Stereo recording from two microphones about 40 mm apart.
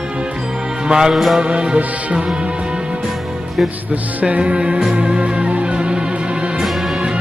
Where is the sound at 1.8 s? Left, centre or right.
Right.